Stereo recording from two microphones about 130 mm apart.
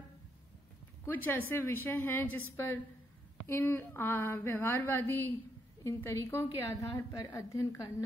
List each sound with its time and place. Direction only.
1.0 s a woman's voice: 15° left (ahead or behind)